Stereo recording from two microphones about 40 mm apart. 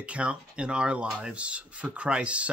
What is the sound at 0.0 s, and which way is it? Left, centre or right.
Speech, right.